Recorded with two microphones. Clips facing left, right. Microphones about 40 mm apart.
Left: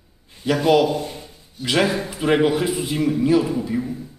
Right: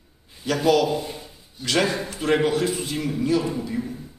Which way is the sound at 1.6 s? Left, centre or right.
Centre.